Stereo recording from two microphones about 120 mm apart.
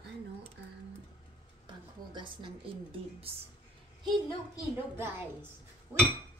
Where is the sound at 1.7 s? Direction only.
40° right (ahead or behind).